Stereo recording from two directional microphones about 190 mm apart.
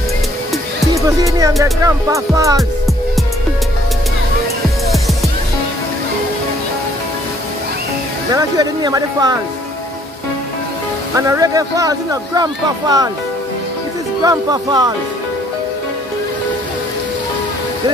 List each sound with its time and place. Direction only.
0.9 s music: 15° right (ahead or behind)
8.3 s speech: 20° right (ahead or behind)
11.1 s speech: 15° right (ahead or behind)
14.2 s speech: 20° right (ahead or behind)